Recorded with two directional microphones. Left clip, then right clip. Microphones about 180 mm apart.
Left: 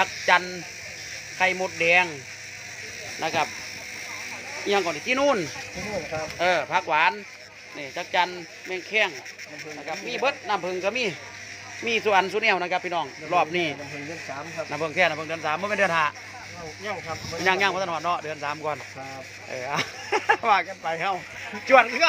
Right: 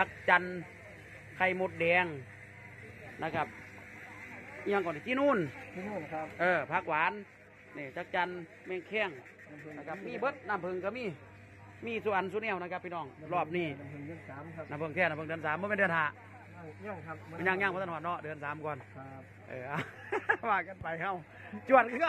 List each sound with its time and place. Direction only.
0.3 s speech: 15° left (ahead or behind)
3.2 s speech: 10° left (ahead or behind)
4.6 s speech: 15° left (ahead or behind); by 13.1 s 30° left (ahead or behind)
13.3 s speech: 15° left (ahead or behind)
17.4 s speech: 20° left (ahead or behind)